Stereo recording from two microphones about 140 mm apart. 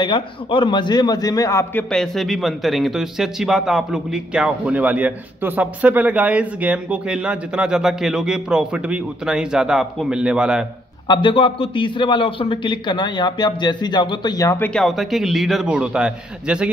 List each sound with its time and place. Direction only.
0.0 s a man's voice: 35° left (ahead or behind); by 10.7 s 5° right (ahead or behind)
11.1 s a man's voice: 35° left (ahead or behind)
14.6 s a man's voice: 5° left (ahead or behind)